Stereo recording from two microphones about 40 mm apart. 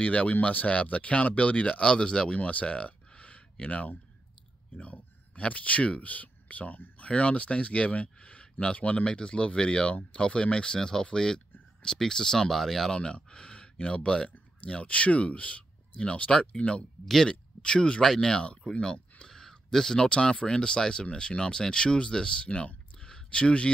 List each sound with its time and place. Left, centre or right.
0.0 s speech: left
7.0 s speech: left; by 12.9 s centre
12.9 s speech: left
17.0 s speech: centre
17.3 s speech: left